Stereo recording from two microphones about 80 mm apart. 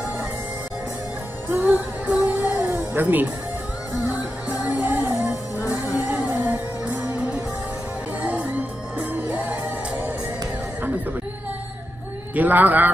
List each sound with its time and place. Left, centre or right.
1.5 s music: right
8.2 s music: centre
12.4 s a man's voice: right